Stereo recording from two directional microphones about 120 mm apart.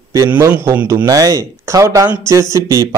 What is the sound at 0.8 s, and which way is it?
Speech, 30° right (ahead or behind).